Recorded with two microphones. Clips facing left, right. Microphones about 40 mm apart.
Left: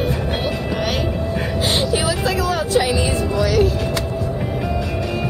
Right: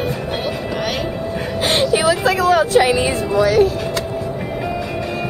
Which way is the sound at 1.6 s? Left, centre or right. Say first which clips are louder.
Right 5 dB; right.